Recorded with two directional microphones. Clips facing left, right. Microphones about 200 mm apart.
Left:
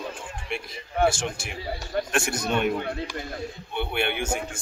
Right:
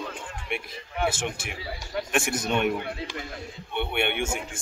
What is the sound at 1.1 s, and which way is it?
Speech, centre (ahead or behind).